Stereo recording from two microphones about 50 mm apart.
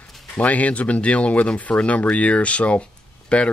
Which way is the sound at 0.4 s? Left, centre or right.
Left.